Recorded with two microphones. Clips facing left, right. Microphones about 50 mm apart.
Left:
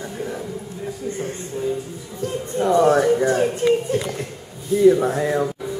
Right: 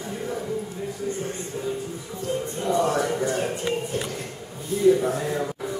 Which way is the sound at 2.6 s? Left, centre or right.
Left.